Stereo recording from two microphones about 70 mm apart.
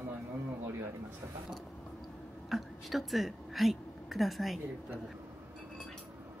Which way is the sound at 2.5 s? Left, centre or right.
Centre.